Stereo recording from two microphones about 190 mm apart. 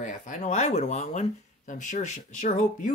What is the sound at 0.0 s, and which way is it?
Speech, 40° left (ahead or behind).